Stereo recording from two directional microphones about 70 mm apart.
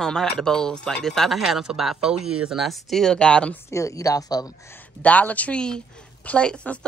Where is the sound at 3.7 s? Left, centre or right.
Left.